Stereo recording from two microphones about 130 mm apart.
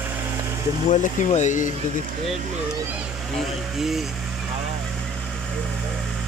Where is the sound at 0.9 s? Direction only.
70° left (ahead or behind).